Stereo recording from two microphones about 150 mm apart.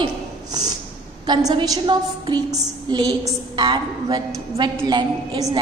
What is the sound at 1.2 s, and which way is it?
A woman's voice, 30° right (ahead or behind).